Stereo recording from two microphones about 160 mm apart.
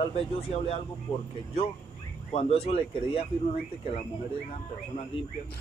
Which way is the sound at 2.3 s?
40° left (ahead or behind).